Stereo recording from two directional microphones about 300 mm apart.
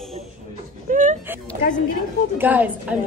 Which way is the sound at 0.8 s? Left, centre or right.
Right.